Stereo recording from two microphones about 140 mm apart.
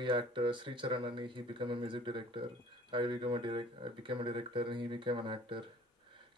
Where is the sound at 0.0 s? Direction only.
35° right (ahead or behind).